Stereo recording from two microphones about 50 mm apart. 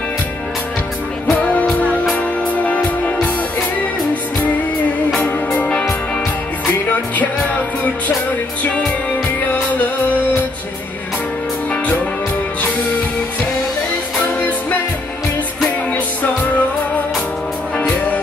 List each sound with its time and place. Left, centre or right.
1.4 s music: left
8.6 s music: left
15.9 s music: left